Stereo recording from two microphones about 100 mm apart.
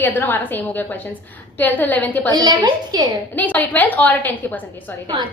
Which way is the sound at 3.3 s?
15° left (ahead or behind).